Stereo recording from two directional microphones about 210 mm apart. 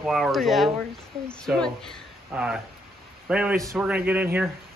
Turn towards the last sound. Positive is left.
turn(degrees=-10)  # may be behind; listen again after turning